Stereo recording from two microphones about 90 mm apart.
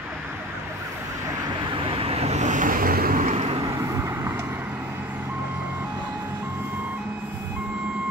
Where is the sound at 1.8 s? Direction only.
90° right.